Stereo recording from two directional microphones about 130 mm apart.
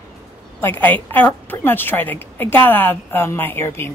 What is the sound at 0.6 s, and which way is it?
A woman's voice, 15° left (ahead or behind).